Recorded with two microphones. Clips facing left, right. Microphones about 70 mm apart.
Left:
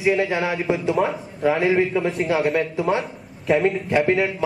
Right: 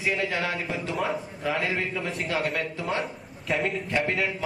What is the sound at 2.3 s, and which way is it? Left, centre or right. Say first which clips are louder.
Speech: left 5 dB; centre.